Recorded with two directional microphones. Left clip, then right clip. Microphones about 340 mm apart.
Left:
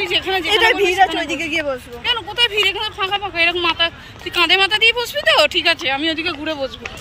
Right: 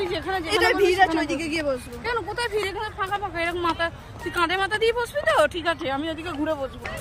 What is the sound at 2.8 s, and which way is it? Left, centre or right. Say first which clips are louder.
Speech: left 6 dB; centre.